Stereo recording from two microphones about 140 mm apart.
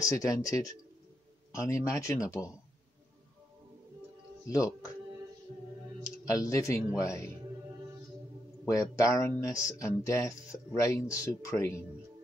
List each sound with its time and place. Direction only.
0.0 s speech: 25° left (ahead or behind)
4.6 s speech: 25° left (ahead or behind)
6.0 s speech: 25° left (ahead or behind)
8.6 s speech: 25° left (ahead or behind)